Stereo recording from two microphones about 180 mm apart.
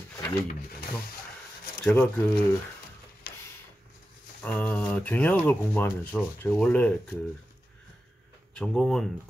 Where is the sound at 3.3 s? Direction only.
55° left (ahead or behind).